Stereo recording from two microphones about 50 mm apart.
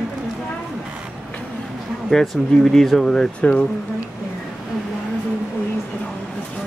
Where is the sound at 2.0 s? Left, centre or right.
Centre.